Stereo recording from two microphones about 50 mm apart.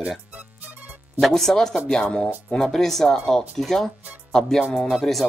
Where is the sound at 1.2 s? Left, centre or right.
Centre.